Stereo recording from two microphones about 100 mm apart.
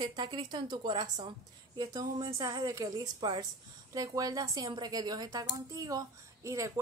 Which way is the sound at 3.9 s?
35° right (ahead or behind).